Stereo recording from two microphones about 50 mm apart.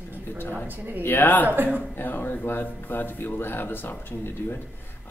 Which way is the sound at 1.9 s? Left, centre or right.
Left.